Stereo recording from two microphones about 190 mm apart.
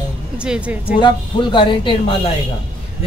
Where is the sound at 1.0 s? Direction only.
25° left (ahead or behind).